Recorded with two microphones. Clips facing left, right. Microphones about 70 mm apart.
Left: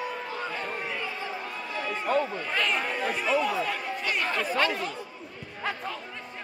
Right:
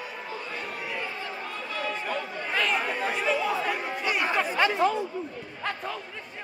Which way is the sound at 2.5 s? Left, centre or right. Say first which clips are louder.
Right 2 dB; centre.